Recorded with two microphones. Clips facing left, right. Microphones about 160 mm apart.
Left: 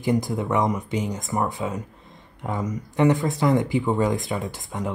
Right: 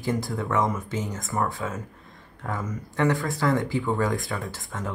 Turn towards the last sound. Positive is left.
turn(degrees=20)  # may be behind; listen again after turning